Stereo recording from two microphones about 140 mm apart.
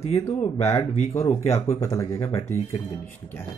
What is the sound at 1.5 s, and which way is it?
Speech, 50° left (ahead or behind).